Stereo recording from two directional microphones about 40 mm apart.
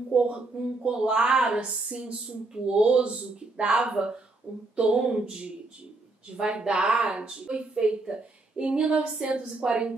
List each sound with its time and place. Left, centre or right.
0.1 s speech: right
6.3 s speech: right